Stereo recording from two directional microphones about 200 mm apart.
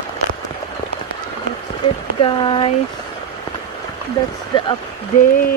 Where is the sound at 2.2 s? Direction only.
25° left (ahead or behind).